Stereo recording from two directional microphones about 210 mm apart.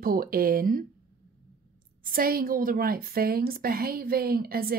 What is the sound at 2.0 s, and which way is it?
A woman's voice, 45° right (ahead or behind).